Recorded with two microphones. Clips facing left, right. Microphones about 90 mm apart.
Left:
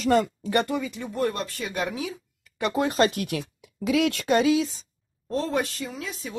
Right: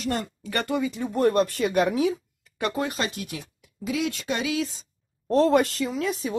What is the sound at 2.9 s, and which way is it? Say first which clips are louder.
Speech: left 7 dB; 50° left (ahead or behind).